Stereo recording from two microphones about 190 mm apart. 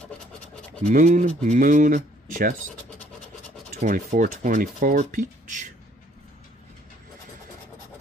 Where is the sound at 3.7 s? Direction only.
45° right (ahead or behind).